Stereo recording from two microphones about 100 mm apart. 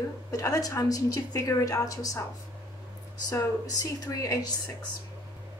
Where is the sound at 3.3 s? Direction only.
35° left (ahead or behind).